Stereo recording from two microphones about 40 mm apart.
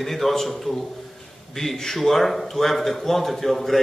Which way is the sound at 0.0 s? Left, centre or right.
Centre.